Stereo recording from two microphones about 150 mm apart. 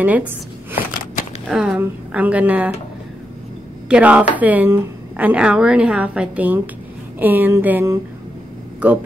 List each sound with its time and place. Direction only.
0.0 s speech: 10° right (ahead or behind)
1.5 s speech: 5° right (ahead or behind)
3.9 s speech: 10° right (ahead or behind)